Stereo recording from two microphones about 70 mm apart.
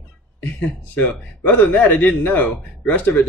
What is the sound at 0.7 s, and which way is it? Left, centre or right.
Speech, left.